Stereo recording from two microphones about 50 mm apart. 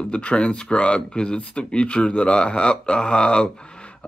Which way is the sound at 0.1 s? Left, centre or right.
Left.